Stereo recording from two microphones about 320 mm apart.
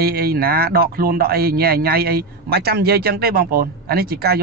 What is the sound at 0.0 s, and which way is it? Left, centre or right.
Speech, right.